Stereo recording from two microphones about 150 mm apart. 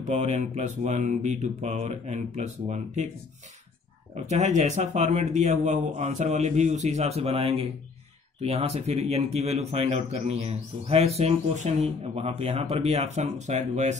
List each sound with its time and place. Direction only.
0.0 s a man's voice: 50° right (ahead or behind)
4.1 s a man's voice: 50° right (ahead or behind)